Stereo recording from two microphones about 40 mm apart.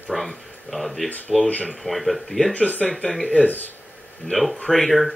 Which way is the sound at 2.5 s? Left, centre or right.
Left.